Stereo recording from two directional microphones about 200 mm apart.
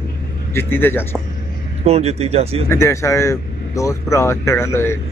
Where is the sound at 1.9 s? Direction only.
30° right (ahead or behind).